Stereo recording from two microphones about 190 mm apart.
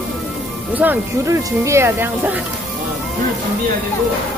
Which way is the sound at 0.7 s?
10° right (ahead or behind).